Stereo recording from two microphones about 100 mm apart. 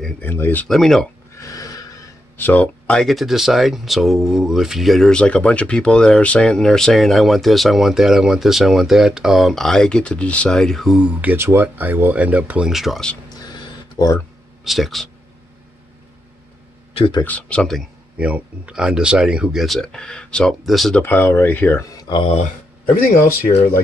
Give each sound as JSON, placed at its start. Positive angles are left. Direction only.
{"t": 0.2, "sound": "speech", "side_deg": 20}
{"t": 0.7, "sound": "speech", "side_deg": 0}
{"t": 1.3, "sound": "a sound", "side_deg": 35}
{"t": 2.3, "sound": "speech", "side_deg": 20}
{"t": 11.0, "sound": "speech", "side_deg": -15}
{"t": 13.3, "sound": "a sound", "side_deg": 45}
{"t": 14.6, "sound": "speech", "side_deg": 0}
{"t": 16.9, "sound": "speech", "side_deg": 55}
{"t": 17.2, "sound": "speech", "side_deg": 15}
{"t": 18.1, "sound": "speech", "side_deg": -10}
{"t": 19.6, "sound": "speech", "side_deg": 5}
{"t": 21.0, "sound": "speech", "side_deg": 20}
{"t": 22.1, "sound": "speech", "side_deg": 60}